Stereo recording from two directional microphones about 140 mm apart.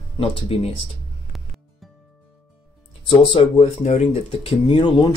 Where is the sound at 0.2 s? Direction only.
40° left (ahead or behind).